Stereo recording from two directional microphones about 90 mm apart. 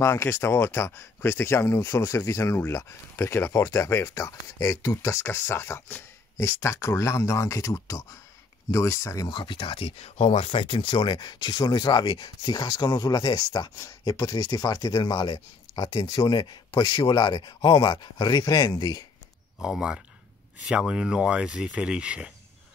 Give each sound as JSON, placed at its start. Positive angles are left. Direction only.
{"t": 0.0, "sound": "speech", "side_deg": 30}
{"t": 9.3, "sound": "speech", "side_deg": 70}
{"t": 13.7, "sound": "speech", "side_deg": 40}
{"t": 19.6, "sound": "speech", "side_deg": -10}